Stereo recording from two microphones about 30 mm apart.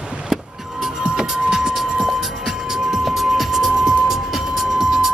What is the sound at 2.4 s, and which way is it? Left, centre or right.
Music, centre.